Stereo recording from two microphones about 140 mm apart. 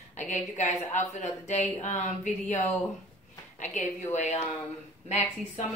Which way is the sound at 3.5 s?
60° left (ahead or behind).